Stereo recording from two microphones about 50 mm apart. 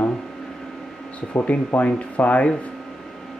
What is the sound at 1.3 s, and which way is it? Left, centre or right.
Speech, left.